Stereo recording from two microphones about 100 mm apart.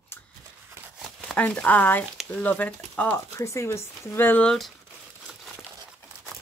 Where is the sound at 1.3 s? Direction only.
10° left (ahead or behind).